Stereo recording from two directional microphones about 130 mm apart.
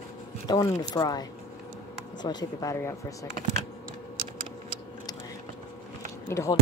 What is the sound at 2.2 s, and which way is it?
Speech, 30° left (ahead or behind).